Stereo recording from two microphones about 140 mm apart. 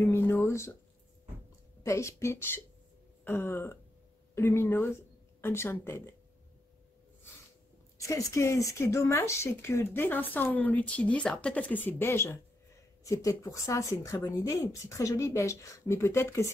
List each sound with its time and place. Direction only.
0.0 s speech: 15° left (ahead or behind)
1.8 s speech: 20° left (ahead or behind)
8.0 s speech: 20° left (ahead or behind)